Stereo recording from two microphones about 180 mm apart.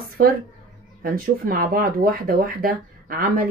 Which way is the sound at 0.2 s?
55° right (ahead or behind).